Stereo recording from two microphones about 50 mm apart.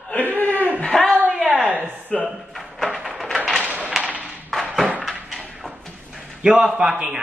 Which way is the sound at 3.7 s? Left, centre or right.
Right.